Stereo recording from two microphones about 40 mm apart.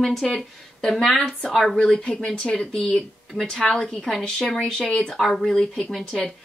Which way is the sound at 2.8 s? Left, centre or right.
Centre.